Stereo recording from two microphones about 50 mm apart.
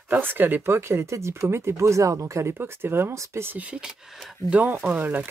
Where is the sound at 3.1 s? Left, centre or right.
Right.